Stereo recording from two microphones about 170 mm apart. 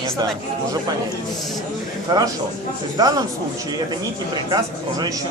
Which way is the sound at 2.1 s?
25° right (ahead or behind).